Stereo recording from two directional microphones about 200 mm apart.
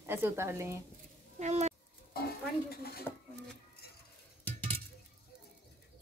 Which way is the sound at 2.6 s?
50° left (ahead or behind).